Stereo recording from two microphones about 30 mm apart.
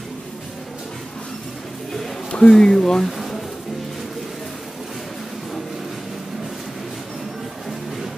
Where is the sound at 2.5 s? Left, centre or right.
Centre.